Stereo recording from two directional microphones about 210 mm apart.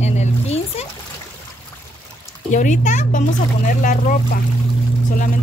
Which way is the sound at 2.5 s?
35° left (ahead or behind).